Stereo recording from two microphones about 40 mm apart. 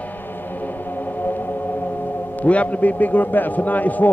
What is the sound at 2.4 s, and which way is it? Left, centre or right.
A man's voice, left.